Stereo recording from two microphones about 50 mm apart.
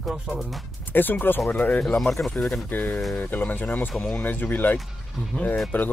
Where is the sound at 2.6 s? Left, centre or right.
Left.